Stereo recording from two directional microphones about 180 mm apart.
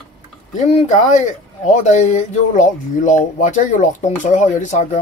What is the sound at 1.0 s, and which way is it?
Speech, 40° left (ahead or behind).